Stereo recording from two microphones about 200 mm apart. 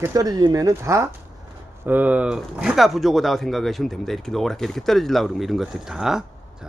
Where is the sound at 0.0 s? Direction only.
15° right (ahead or behind).